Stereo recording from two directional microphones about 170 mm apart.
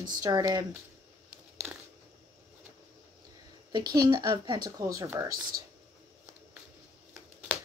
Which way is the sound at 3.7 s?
25° right (ahead or behind).